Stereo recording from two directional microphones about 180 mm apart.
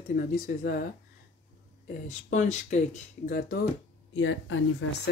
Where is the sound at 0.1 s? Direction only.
55° left (ahead or behind).